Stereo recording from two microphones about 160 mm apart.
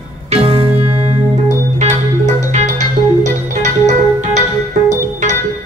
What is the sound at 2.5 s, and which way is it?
Music, 50° right (ahead or behind).